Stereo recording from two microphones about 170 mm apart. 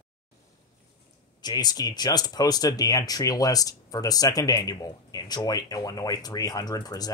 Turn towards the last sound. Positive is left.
turn(degrees=20)  # may be behind; listen again after turning